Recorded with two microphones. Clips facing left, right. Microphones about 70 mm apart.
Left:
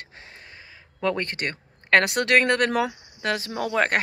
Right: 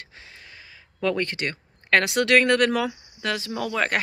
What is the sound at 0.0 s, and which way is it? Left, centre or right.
Speech, left.